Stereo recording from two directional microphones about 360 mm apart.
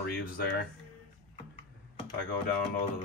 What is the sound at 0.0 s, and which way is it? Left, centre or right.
Speech, left.